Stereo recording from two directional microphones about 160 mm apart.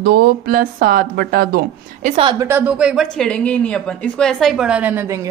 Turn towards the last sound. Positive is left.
turn(degrees=-10)  # may be behind; listen again after turning